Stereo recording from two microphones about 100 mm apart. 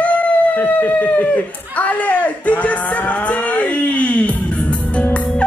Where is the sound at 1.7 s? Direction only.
15° left (ahead or behind).